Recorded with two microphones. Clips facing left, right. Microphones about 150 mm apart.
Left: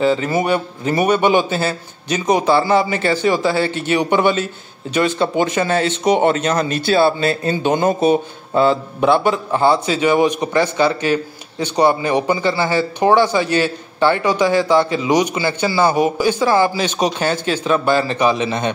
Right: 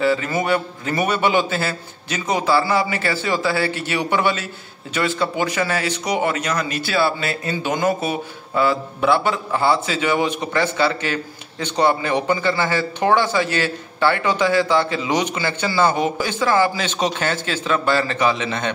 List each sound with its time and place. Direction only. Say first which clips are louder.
0.0 s a man's voice: left 3 dB; 20° left (ahead or behind)